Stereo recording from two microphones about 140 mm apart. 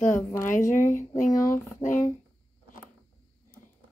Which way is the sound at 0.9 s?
65° left (ahead or behind).